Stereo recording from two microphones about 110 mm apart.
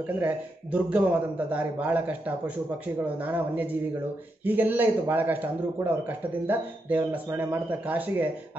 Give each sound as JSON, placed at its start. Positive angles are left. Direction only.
{"t": 0.0, "sound": "speech", "side_deg": -15}